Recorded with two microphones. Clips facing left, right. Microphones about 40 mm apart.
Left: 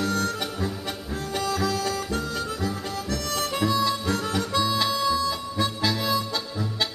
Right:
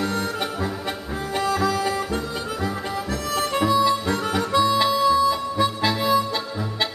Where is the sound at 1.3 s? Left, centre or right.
Centre.